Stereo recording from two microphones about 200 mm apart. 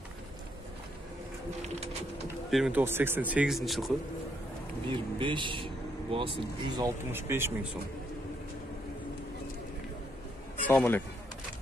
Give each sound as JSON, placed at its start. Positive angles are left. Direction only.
{"t": 2.5, "sound": "speech", "side_deg": 0}
{"t": 4.8, "sound": "speech", "side_deg": -25}
{"t": 7.1, "sound": "speech", "side_deg": -10}
{"t": 10.7, "sound": "speech", "side_deg": 10}